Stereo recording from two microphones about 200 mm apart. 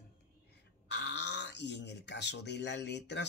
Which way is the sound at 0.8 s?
60° left (ahead or behind).